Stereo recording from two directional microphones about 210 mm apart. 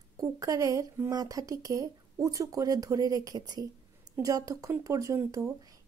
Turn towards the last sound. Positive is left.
turn(degrees=-15)  # may be behind; listen again after turning